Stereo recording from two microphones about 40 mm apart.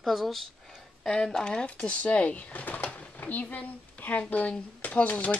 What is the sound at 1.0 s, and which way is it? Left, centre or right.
Speech, centre.